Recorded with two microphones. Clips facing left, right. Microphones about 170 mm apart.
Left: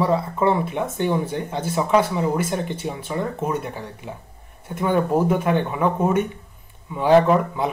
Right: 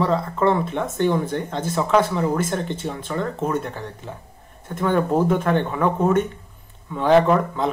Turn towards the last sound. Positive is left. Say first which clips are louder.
# even
turn(degrees=10)  # may be behind; listen again after turning